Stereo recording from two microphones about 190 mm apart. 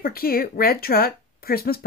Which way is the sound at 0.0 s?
50° left (ahead or behind).